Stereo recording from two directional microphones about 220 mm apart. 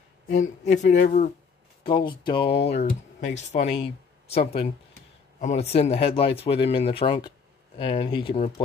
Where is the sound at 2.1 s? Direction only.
20° left (ahead or behind).